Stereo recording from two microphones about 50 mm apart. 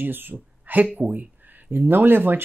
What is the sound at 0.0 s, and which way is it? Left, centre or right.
Speech, right.